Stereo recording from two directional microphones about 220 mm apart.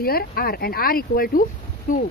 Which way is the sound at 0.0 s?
45° left (ahead or behind).